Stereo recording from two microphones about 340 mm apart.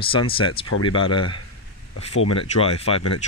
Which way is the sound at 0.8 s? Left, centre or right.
Centre.